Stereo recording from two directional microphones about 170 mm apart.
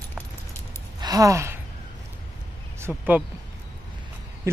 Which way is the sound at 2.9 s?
10° right (ahead or behind).